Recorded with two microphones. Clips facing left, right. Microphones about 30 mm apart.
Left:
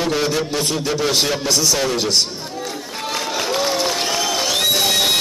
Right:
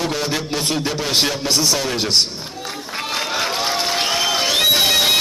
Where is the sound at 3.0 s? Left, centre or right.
Centre.